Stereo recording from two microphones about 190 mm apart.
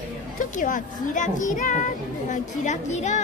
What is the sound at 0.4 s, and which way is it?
A woman's voice, 45° left (ahead or behind).